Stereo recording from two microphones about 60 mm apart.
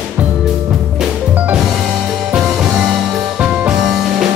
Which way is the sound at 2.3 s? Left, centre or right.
Centre.